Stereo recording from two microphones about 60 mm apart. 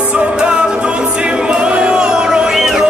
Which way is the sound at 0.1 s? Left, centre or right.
Centre.